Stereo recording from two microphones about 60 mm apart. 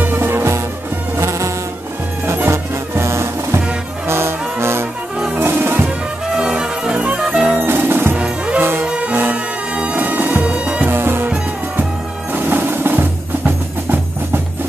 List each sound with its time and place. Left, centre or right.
0.0 s music: right
1.1 s music: right
2.2 s music: right
6.3 s music: centre
7.5 s music: right
8.1 s music: right
10.9 s music: right
12.3 s music: right